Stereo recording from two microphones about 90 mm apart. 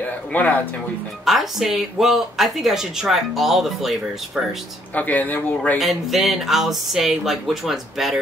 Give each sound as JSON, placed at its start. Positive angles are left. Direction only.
{"t": 0.3, "sound": "speech", "side_deg": 20}
{"t": 1.2, "sound": "speech", "side_deg": -5}
{"t": 4.9, "sound": "speech", "side_deg": 20}
{"t": 5.8, "sound": "speech", "side_deg": 0}